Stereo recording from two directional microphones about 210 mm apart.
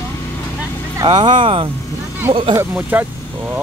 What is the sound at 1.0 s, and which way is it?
Speech, 20° right (ahead or behind).